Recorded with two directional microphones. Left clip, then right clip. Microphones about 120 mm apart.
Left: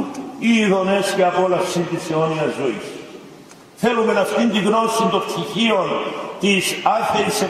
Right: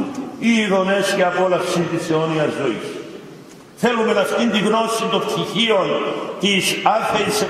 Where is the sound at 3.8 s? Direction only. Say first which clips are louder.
Even; 15° left (ahead or behind).